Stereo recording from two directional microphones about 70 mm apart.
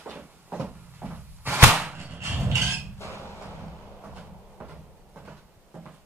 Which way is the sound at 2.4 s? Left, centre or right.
Right.